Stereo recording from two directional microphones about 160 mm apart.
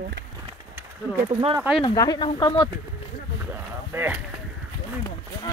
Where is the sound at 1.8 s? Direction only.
25° left (ahead or behind).